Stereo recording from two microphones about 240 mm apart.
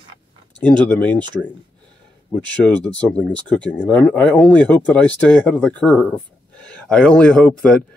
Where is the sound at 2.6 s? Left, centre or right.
Centre.